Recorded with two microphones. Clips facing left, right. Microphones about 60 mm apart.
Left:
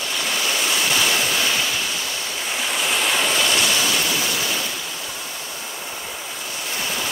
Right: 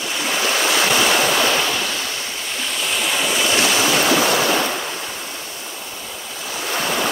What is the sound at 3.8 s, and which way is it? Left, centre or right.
Boat, right.